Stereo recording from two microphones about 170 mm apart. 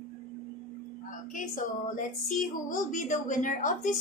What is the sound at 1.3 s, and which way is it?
A woman's voice, 50° left (ahead or behind).